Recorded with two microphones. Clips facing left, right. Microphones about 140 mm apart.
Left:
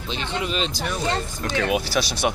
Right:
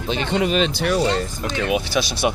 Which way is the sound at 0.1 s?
55° right (ahead or behind).